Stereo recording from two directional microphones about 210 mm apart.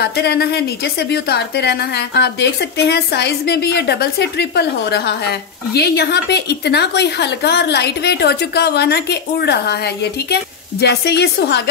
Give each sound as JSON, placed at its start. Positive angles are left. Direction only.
{"t": 0.0, "sound": "a woman's voice", "side_deg": 50}